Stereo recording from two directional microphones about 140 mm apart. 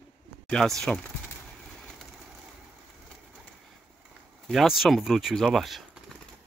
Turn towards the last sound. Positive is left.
turn(degrees=0)  # may be behind; listen again after turning